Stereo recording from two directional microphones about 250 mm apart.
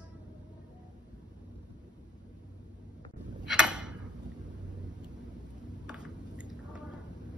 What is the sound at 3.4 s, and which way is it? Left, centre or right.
Tick-tock, centre.